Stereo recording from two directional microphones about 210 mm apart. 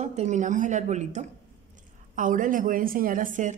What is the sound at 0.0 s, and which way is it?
A woman's voice, 35° right (ahead or behind).